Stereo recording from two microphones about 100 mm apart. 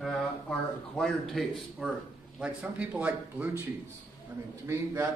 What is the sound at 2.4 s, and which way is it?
Speech, 10° right (ahead or behind).